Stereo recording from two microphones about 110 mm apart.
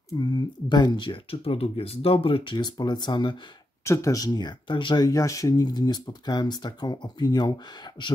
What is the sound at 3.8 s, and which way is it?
Speech, 25° left (ahead or behind).